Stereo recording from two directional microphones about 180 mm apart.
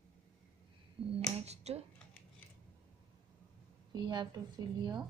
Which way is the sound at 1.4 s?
35° right (ahead or behind).